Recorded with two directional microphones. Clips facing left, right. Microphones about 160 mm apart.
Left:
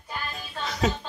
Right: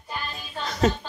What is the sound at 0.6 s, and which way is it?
Music, centre (ahead or behind).